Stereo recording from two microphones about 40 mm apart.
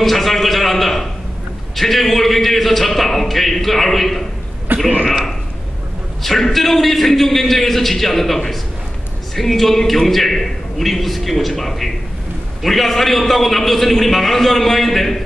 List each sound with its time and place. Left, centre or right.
0.0 s a man's voice: centre
4.7 s speech: right
6.2 s a man's voice: centre